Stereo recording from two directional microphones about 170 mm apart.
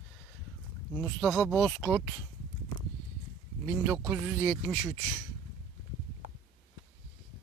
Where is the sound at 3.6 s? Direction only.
15° right (ahead or behind).